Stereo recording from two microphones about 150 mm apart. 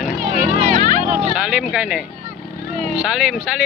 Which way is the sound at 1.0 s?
60° right (ahead or behind).